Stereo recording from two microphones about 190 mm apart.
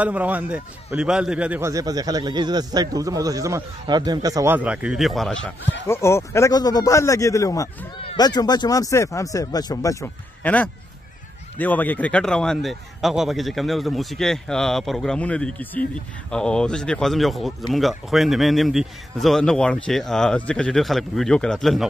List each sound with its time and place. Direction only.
0.0 s a man's voice: 10° right (ahead or behind)
4.6 s speech: 5° right (ahead or behind)
5.9 s speech: 15° left (ahead or behind)